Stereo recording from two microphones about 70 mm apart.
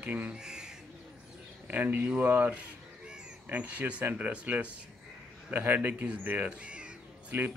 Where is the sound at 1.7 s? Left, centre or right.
Right.